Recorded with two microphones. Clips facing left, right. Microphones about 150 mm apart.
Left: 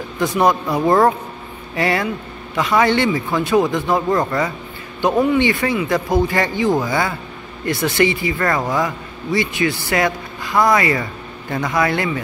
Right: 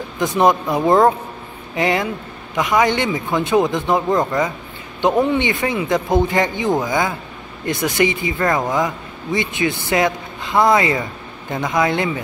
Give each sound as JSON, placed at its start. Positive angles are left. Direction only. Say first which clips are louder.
{"t": 0.2, "sound": "speech", "louder": "right 1 dB", "side_deg": -20}